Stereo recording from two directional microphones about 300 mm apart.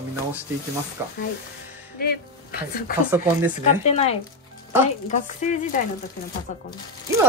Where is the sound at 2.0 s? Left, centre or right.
Left.